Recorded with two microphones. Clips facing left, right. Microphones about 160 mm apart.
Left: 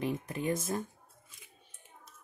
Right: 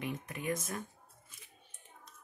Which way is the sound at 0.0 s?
30° left (ahead or behind).